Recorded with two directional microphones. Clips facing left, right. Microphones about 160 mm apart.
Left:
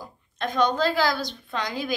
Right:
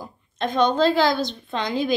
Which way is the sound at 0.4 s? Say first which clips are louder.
Right 4 dB; 25° right (ahead or behind).